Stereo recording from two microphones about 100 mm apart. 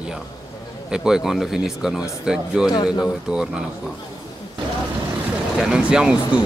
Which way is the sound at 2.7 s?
45° left (ahead or behind).